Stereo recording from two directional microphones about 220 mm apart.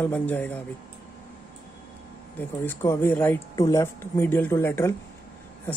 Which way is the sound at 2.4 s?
10° left (ahead or behind).